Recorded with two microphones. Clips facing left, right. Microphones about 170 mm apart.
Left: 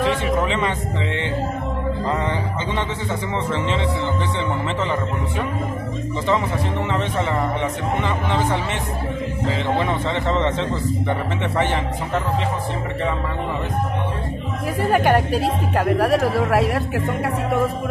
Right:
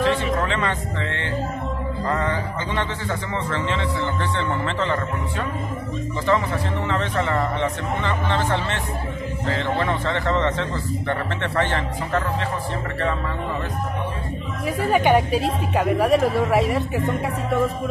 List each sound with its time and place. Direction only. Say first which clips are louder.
0.0 s speech: left 1 dB; 15° left (ahead or behind)
2.0 s music: right 2 dB; 15° left (ahead or behind)
6.9 s a man's voice: right 1 dB; 20° left (ahead or behind)
14.9 s speech: even; centre (ahead or behind)